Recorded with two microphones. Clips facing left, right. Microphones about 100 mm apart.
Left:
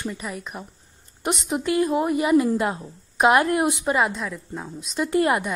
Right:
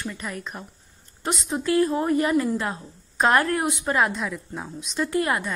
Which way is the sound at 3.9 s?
Centre (ahead or behind).